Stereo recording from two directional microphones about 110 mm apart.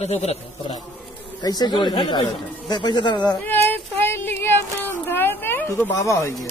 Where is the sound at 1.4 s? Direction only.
40° left (ahead or behind).